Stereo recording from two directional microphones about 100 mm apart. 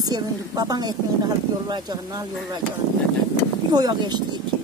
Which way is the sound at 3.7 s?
45° right (ahead or behind).